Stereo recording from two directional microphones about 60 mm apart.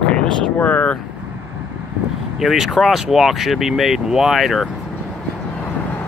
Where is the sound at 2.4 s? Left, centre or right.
Centre.